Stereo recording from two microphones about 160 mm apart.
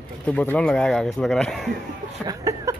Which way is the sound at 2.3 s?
20° right (ahead or behind).